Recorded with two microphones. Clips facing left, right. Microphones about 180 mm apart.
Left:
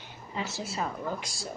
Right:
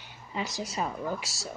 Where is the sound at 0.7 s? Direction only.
5° right (ahead or behind).